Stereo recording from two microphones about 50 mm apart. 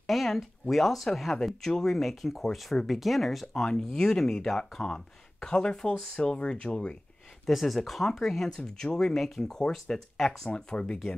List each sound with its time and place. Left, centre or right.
0.0 s speech: centre
7.4 s speech: centre
10.5 s speech: centre